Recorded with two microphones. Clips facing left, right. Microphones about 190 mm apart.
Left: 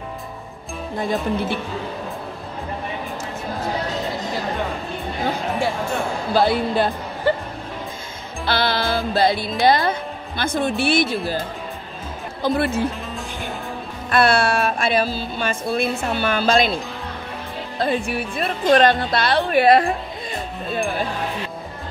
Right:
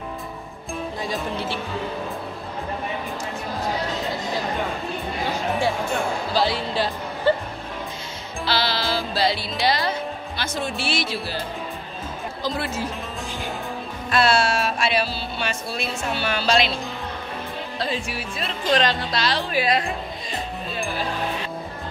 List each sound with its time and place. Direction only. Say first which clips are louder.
0.9 s music: left 8 dB; 55° left (ahead or behind)
6.3 s music: left 6 dB; 55° left (ahead or behind)
8.5 s music: left 3 dB; 55° left (ahead or behind)
9.6 s speech: left 6 dB; 50° left (ahead or behind)
12.4 s speech: left 7 dB; 55° left (ahead or behind)
14.1 s music: left 3 dB; 60° left (ahead or behind)
17.7 s speech: left 7 dB; 55° left (ahead or behind)